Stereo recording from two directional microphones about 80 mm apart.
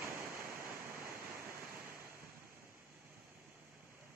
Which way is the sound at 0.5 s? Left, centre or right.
Right.